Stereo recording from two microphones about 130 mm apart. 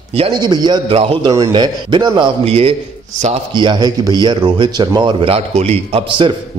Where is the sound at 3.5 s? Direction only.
35° right (ahead or behind).